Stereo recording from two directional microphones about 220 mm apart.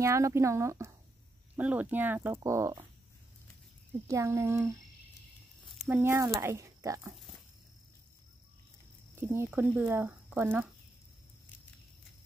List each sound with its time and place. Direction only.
0.0 s speech: 15° right (ahead or behind)
4.1 s speech: 15° right (ahead or behind)
5.8 s speech: 10° right (ahead or behind)
9.1 s speech: 10° right (ahead or behind)